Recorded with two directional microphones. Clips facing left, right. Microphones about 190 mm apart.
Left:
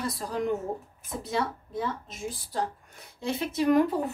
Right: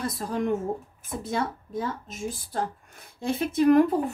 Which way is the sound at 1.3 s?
50° right (ahead or behind).